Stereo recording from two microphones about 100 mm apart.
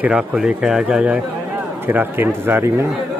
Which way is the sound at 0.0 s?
10° right (ahead or behind).